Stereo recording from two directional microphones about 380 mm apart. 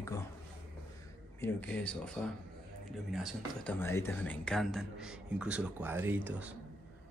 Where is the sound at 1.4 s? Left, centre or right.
Centre.